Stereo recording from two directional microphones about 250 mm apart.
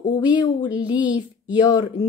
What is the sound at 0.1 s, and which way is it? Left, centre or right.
Speech, centre.